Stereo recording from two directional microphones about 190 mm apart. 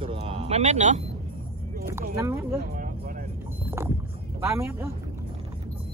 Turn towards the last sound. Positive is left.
turn(degrees=-15)  # may be behind; listen again after turning